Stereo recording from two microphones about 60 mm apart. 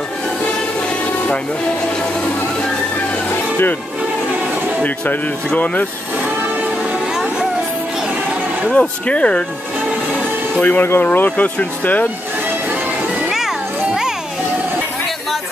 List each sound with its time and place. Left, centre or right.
8.6 s speech: left
10.6 s speech: left